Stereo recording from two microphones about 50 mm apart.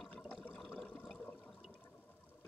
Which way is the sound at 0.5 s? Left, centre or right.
Centre.